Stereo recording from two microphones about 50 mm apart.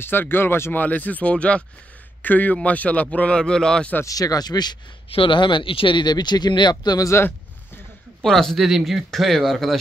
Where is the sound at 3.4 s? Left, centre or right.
Centre.